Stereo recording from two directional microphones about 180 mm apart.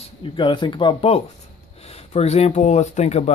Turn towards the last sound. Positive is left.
turn(degrees=40)  # may be behind; listen again after turning